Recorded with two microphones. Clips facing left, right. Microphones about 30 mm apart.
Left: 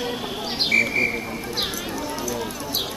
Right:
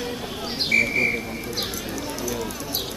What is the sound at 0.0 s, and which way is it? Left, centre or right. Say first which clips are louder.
Bird: left 2 dB; centre.